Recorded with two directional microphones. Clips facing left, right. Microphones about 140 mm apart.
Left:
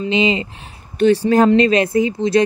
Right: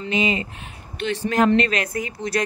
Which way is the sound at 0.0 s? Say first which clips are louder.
Left 5 dB; 25° left (ahead or behind).